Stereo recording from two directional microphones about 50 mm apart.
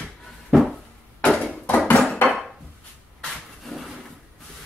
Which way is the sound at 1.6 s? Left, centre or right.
Left.